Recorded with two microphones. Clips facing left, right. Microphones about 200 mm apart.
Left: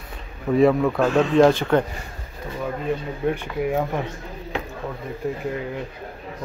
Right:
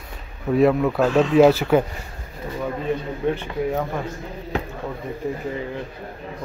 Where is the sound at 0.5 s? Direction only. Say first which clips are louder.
Even; centre (ahead or behind).